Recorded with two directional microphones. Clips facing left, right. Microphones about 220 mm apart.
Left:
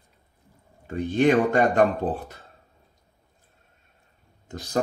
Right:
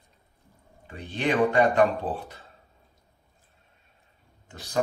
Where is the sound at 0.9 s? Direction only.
45° left (ahead or behind).